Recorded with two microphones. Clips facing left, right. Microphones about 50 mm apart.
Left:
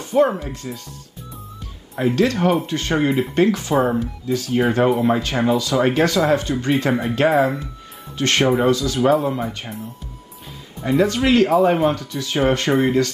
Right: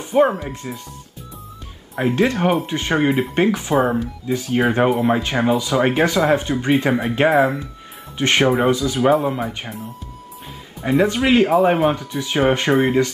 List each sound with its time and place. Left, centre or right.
0.0 s music: centre
0.4 s speech: centre
2.1 s speech: right
3.7 s speech: centre
4.3 s speech: centre
6.9 s speech: centre
8.2 s speech: centre
9.1 s speech: centre
10.8 s speech: centre